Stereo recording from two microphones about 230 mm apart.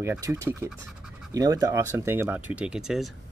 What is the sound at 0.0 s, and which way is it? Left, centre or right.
Speech, centre.